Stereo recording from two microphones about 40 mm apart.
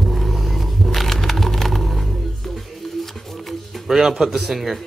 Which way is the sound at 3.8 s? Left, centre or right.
Centre.